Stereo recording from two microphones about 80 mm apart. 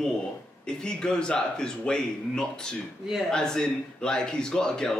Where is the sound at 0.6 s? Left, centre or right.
Centre.